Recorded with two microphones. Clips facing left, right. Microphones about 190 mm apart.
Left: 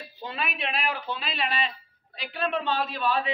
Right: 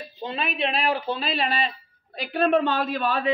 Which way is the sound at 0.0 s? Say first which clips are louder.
Right 4 dB; 20° right (ahead or behind).